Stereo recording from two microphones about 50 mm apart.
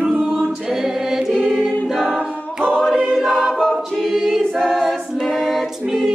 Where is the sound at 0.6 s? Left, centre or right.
Centre.